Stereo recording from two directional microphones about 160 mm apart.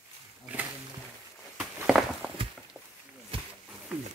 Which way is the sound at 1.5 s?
5° right (ahead or behind).